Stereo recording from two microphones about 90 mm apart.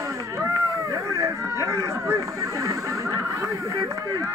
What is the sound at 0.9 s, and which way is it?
Speech, 35° right (ahead or behind).